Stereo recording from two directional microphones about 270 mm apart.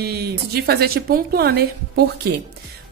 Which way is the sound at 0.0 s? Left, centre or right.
Right.